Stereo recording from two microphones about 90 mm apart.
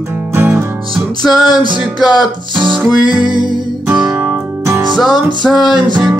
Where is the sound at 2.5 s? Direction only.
65° right (ahead or behind).